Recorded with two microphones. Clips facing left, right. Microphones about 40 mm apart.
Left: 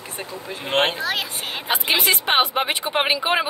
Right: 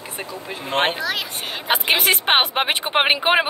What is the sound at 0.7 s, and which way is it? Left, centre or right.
Speech, right.